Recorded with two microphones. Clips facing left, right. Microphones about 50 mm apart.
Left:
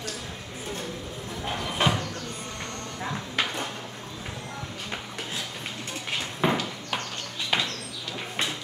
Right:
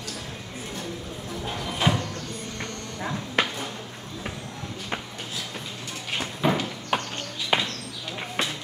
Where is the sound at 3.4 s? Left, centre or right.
Right.